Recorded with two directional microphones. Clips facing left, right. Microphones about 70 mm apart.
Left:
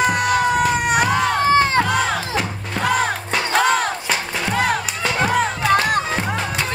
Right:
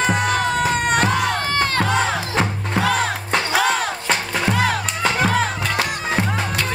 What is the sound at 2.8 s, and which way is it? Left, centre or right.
Battle cry, centre.